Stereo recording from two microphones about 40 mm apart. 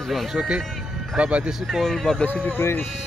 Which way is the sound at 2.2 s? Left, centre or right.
Left.